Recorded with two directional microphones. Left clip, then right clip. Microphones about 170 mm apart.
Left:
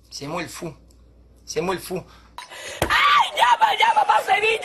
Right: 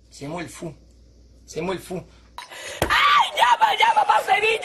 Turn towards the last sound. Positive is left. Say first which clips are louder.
# even
turn(degrees=0)  # may be behind; listen again after turning